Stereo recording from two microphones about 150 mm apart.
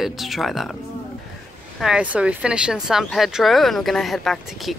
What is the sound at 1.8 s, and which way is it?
Speech, 5° right (ahead or behind).